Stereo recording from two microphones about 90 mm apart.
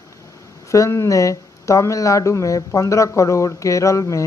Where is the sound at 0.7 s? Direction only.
35° left (ahead or behind).